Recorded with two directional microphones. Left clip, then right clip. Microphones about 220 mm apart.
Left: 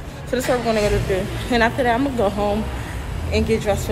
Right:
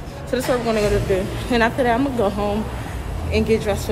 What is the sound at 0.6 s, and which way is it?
A woman's voice, 15° right (ahead or behind).